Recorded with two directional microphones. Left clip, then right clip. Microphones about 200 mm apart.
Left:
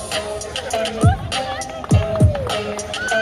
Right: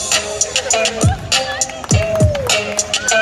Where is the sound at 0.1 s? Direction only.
Centre (ahead or behind).